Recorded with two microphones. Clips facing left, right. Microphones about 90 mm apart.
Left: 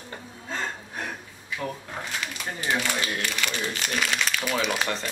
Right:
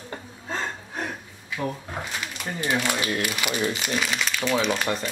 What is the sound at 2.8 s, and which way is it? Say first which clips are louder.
Speech: right 3 dB; 15° right (ahead or behind).